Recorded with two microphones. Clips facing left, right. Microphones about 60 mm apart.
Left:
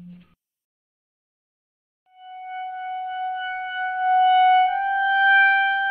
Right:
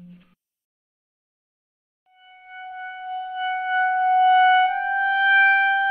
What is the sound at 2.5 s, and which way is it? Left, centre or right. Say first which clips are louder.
Music: left 4 dB; centre.